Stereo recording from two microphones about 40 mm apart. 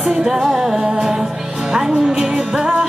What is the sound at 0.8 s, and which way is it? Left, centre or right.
Music, centre.